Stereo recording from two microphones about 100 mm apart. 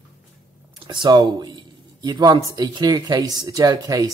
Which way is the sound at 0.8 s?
50° right (ahead or behind).